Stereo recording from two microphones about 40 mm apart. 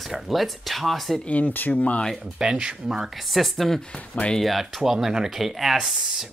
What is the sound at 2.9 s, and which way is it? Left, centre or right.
Speech, centre.